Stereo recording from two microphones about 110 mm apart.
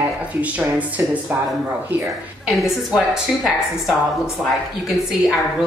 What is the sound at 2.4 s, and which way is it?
Speech, 5° right (ahead or behind).